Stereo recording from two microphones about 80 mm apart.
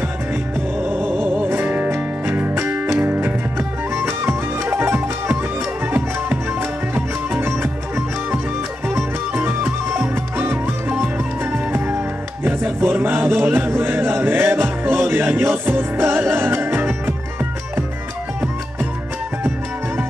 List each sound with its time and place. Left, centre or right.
0.8 s music: right
12.4 s a sound: right
15.0 s music: right